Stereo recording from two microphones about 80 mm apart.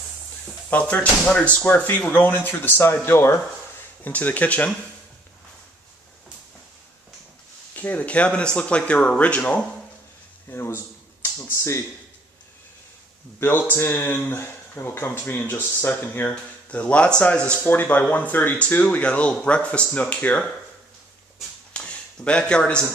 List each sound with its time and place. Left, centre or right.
0.7 s speech: centre
4.0 s speech: left
7.7 s speech: centre
10.5 s speech: left
13.4 s speech: left
21.7 s a sound: centre